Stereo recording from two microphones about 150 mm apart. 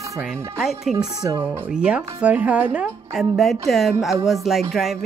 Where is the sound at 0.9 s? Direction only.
25° right (ahead or behind).